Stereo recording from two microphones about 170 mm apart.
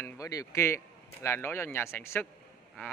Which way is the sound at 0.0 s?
20° left (ahead or behind).